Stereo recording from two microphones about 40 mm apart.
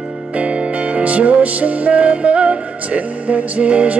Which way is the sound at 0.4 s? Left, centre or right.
Right.